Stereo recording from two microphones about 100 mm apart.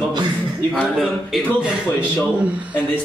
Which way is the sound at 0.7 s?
Centre (ahead or behind).